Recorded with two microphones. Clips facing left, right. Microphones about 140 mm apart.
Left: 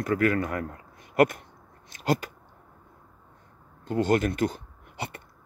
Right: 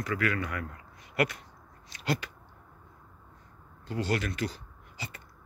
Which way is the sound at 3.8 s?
50° left (ahead or behind).